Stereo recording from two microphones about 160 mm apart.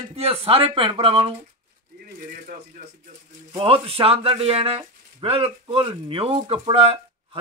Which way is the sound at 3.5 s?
35° right (ahead or behind).